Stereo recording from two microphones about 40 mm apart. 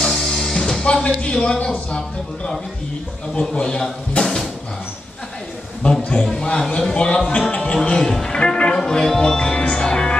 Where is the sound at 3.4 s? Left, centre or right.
Left.